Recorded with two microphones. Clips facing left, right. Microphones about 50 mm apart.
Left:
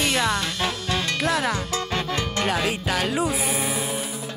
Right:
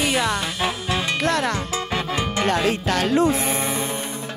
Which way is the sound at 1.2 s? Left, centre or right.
Centre.